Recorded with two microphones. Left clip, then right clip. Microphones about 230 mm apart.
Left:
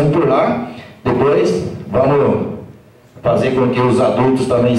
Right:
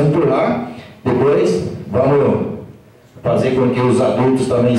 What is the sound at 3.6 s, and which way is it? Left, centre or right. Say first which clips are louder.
A man's voice: left 1 dB; centre.